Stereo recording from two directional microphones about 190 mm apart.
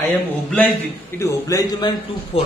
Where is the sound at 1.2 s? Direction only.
20° left (ahead or behind).